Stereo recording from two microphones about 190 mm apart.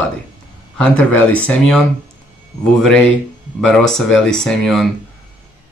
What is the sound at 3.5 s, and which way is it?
Speech, centre (ahead or behind).